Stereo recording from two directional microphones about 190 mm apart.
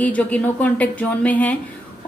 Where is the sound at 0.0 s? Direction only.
10° left (ahead or behind).